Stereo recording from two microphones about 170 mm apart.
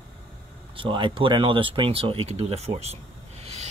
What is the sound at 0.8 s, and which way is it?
Speech, 30° right (ahead or behind).